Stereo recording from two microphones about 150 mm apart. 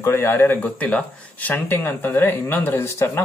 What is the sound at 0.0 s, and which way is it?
Speech, 15° left (ahead or behind).